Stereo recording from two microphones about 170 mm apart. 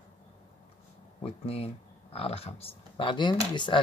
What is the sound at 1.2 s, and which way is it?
Speech, 35° left (ahead or behind).